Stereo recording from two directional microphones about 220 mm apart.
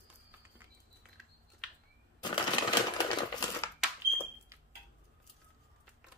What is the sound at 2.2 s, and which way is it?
Typewriter, 20° left (ahead or behind).